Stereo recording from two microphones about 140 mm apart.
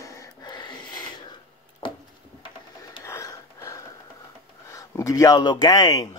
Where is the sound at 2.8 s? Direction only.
20° left (ahead or behind).